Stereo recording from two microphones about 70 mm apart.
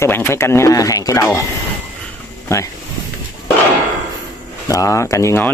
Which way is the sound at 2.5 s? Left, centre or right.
Left.